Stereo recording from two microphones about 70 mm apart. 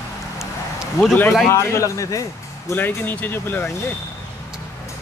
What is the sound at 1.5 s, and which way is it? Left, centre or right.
Speech, left.